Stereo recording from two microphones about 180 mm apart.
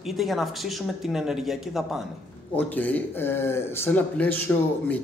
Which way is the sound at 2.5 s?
10° left (ahead or behind).